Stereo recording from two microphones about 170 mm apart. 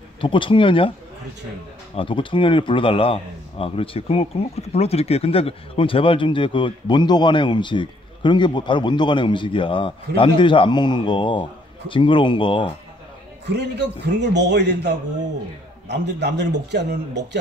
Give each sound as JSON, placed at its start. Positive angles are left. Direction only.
{"t": 0.2, "sound": "speech", "side_deg": 30}
{"t": 2.0, "sound": "speech", "side_deg": 30}
{"t": 13.5, "sound": "a man's voice", "side_deg": -85}